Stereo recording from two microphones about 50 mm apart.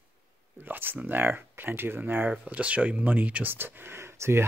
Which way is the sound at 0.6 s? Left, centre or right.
Right.